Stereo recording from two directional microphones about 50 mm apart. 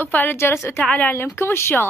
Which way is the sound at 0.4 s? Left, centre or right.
Left.